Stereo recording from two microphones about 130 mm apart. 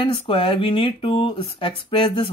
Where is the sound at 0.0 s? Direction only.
40° left (ahead or behind).